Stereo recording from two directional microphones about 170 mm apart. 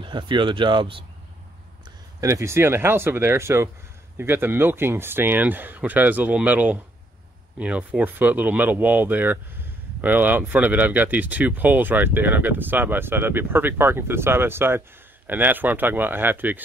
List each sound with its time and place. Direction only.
0.0 s speech: 30° right (ahead or behind)
2.1 s speech: 20° right (ahead or behind)